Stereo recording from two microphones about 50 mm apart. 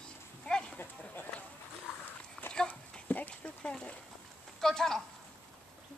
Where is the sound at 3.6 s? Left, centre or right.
Left.